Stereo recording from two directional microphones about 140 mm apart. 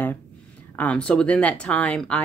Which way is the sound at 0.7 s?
10° left (ahead or behind).